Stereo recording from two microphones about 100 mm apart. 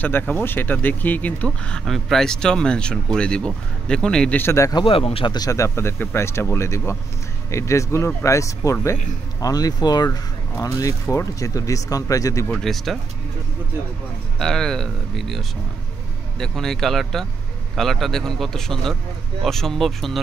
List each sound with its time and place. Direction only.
0.0 s speech: 15° left (ahead or behind)
1.9 s speech: centre (ahead or behind)
4.4 s speech: 30° left (ahead or behind)
4.7 s speech: 60° left (ahead or behind)
5.3 s speech: 35° left (ahead or behind)
12.6 s a man's voice: centre (ahead or behind)
14.4 s a man's voice: 5° left (ahead or behind)